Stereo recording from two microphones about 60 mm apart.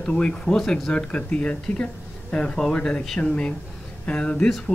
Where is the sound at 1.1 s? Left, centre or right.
Left.